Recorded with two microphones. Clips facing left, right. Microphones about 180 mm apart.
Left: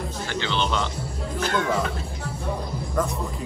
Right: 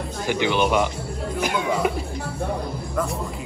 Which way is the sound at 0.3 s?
15° right (ahead or behind).